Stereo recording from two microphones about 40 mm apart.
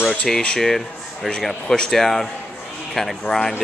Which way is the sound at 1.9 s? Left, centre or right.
Centre.